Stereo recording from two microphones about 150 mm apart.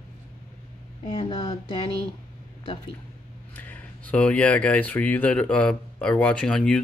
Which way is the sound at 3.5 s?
10° left (ahead or behind).